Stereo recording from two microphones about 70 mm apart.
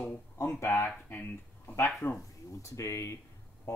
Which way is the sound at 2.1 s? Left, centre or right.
Left.